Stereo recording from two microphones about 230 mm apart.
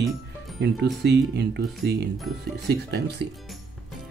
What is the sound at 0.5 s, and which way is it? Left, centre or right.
Speech, right.